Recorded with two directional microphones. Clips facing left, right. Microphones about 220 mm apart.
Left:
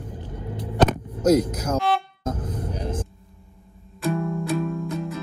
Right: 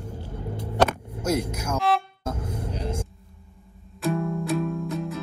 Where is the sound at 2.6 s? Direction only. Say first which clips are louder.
Even; 25° right (ahead or behind).